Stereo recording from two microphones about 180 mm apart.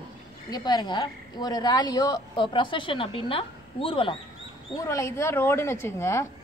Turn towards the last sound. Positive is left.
turn(degrees=15)  # may be behind; listen again after turning